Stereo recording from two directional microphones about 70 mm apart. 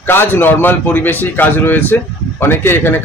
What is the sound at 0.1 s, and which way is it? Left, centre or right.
A man's voice, left.